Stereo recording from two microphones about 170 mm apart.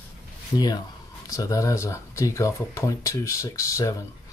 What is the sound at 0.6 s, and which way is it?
Speech, 25° left (ahead or behind).